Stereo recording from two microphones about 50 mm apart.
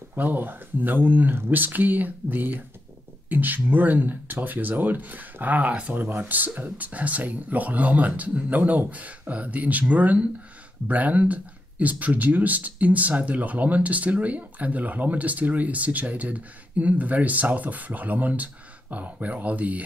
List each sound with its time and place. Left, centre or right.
0.1 s speech: right